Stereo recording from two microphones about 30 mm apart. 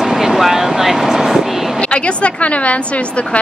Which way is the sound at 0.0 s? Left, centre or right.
Centre.